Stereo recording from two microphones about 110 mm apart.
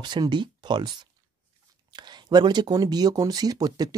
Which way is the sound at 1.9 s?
40° right (ahead or behind).